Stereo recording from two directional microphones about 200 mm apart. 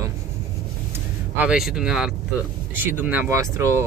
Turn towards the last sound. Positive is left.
turn(degrees=-15)  # may be behind; listen again after turning